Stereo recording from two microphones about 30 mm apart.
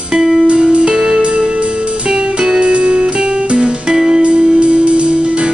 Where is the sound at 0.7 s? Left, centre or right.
Right.